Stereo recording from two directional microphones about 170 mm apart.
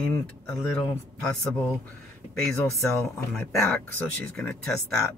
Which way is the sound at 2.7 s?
15° left (ahead or behind).